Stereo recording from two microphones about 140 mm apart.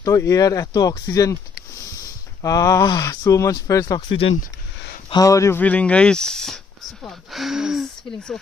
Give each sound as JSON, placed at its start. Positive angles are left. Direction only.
{"t": 0.0, "sound": "speech", "side_deg": 25}
{"t": 5.6, "sound": "speech", "side_deg": 10}